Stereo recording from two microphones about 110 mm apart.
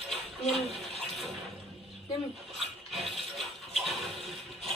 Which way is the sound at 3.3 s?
Centre (ahead or behind).